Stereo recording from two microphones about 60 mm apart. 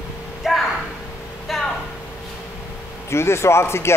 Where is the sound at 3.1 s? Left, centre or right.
Left.